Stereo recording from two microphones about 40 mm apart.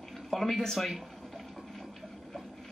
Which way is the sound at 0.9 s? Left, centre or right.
Centre.